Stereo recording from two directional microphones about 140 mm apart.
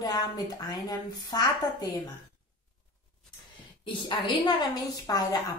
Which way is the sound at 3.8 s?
35° left (ahead or behind).